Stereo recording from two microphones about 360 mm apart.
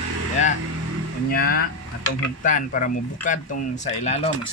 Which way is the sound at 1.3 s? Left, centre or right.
Left.